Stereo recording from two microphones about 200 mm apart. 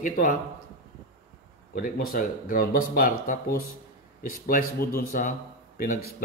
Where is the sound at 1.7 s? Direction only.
45° left (ahead or behind).